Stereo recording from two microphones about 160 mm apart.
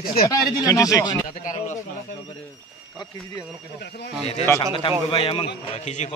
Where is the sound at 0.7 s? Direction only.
20° left (ahead or behind).